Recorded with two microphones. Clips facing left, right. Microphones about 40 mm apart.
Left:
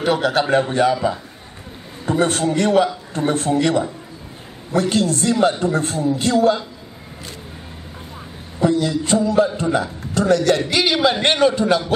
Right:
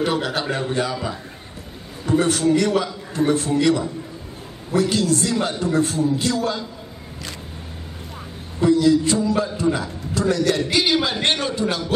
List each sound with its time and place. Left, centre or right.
0.0 s a man's voice: centre
0.4 s a man's voice: left
2.0 s a man's voice: left
8.6 s a man's voice: left
10.7 s a man's voice: centre